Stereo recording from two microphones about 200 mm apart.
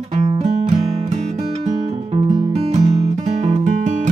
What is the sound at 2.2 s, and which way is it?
Music, 25° right (ahead or behind).